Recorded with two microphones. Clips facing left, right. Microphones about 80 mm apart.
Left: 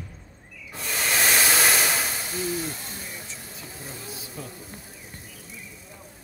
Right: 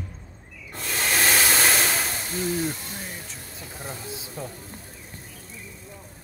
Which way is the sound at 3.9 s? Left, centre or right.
Right.